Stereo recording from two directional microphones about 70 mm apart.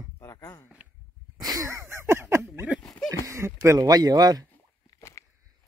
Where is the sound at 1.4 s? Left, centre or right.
Right.